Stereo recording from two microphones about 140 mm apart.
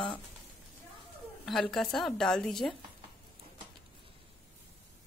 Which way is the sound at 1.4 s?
5° left (ahead or behind).